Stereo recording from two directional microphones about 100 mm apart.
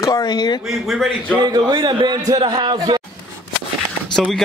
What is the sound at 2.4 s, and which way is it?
Speech, 50° right (ahead or behind).